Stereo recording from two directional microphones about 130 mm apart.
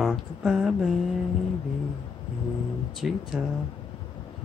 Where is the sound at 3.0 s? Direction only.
5° right (ahead or behind).